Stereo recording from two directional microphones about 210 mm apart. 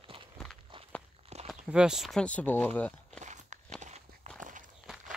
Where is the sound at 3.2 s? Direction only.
35° right (ahead or behind).